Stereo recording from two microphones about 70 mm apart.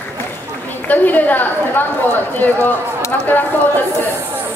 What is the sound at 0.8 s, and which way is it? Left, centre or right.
A woman's voice, left.